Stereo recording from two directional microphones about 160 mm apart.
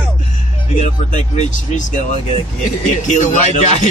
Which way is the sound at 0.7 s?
45° left (ahead or behind).